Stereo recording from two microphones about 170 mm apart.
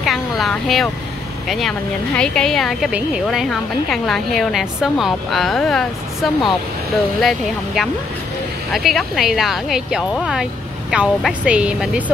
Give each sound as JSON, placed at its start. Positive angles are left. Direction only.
{"t": 0.0, "sound": "a woman's voice", "side_deg": 0}